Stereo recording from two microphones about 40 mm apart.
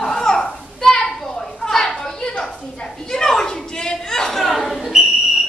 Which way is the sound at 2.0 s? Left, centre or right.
Centre.